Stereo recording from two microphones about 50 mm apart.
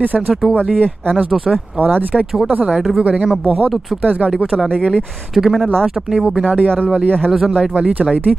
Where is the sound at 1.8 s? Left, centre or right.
Right.